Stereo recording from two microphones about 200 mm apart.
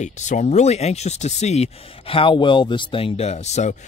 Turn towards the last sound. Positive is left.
turn(degrees=35)  # may be behind; listen again after turning